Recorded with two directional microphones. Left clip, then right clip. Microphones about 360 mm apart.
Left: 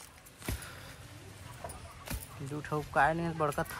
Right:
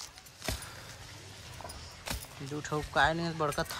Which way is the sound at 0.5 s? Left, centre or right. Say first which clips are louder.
Right 4 dB; right.